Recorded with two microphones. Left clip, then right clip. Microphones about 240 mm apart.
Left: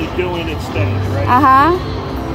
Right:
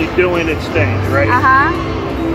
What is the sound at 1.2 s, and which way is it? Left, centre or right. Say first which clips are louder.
Speech: left 2 dB; left.